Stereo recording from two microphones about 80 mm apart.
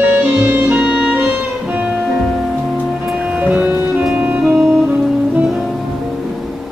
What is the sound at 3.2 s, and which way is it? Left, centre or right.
Music, centre.